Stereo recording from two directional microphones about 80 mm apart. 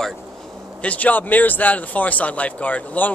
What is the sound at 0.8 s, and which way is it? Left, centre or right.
Speech, centre.